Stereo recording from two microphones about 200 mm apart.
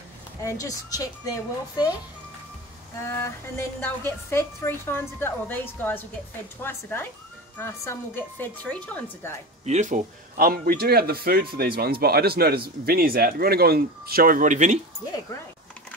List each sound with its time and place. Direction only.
0.4 s a woman's voice: 15° left (ahead or behind)
3.2 s a woman's voice: 10° left (ahead or behind)
9.7 s speech: 35° right (ahead or behind)